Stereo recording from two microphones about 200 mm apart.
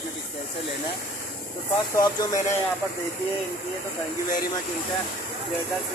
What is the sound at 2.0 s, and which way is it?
Speech, 20° left (ahead or behind).